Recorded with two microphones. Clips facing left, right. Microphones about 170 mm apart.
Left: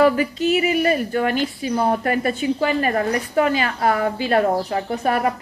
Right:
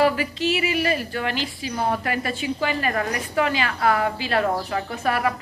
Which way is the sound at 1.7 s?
35° left (ahead or behind).